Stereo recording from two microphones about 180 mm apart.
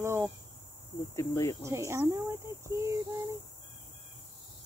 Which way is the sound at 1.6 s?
15° right (ahead or behind).